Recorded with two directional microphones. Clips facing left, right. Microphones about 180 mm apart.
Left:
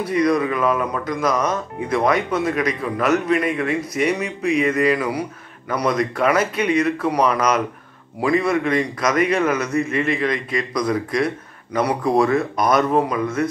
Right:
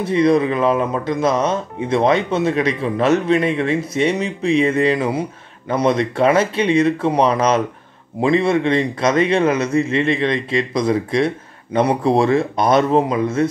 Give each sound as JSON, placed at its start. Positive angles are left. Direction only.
{"t": 0.0, "sound": "a man's voice", "side_deg": -25}